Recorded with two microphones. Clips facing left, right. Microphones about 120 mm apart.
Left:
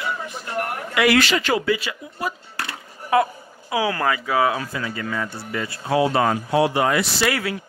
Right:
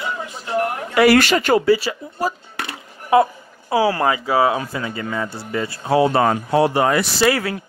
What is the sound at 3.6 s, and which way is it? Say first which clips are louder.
Speech: right 4 dB; 35° right (ahead or behind).